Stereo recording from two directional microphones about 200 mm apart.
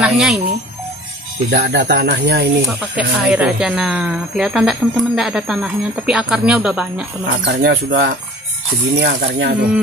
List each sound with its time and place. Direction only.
0.0 s speech: centre (ahead or behind)
1.5 s speech: 55° right (ahead or behind)
3.0 s speech: 5° right (ahead or behind)
7.2 s speech: 55° right (ahead or behind)